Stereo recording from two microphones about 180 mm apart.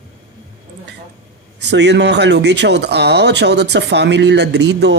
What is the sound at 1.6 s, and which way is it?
Speech, 70° right (ahead or behind).